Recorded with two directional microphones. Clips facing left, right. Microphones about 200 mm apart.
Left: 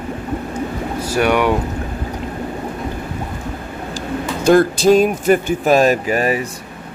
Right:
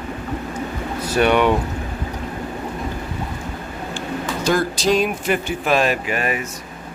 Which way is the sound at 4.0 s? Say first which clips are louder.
Left 3 dB; 50° left (ahead or behind).